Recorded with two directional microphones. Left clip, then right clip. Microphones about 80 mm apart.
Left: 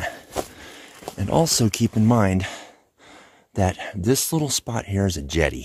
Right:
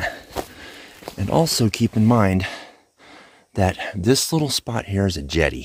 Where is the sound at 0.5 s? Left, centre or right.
Right.